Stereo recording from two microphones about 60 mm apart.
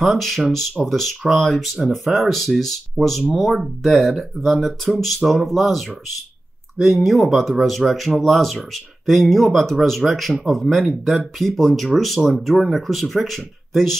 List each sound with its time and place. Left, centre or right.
0.0 s speech: centre